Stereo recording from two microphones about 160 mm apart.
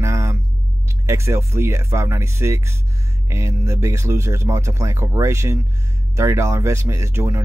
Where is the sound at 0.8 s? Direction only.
15° right (ahead or behind).